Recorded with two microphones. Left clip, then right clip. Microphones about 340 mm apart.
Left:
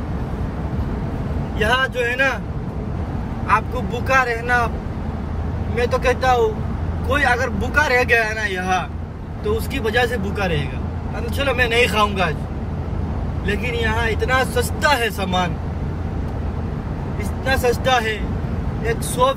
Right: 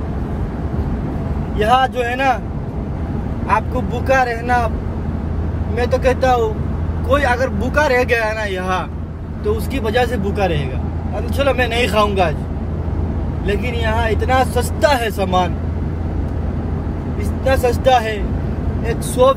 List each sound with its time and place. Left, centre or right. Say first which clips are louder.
1.6 s speech: right 4 dB; centre
3.9 s speech: right 2 dB; centre
5.8 s speech: right 3 dB; centre
13.5 s speech: right 2 dB; centre
17.5 s speech: right 4 dB; centre